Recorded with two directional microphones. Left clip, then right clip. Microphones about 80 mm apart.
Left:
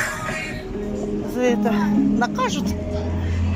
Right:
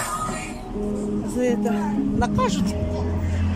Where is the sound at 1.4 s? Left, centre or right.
Right.